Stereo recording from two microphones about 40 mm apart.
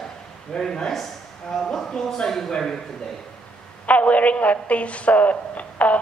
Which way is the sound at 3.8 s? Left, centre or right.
Left.